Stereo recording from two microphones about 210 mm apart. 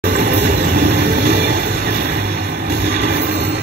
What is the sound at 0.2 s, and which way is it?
Train, 50° right (ahead or behind).